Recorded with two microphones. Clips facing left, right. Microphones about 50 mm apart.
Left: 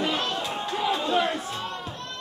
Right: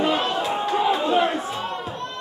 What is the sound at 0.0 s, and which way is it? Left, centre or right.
Music, centre.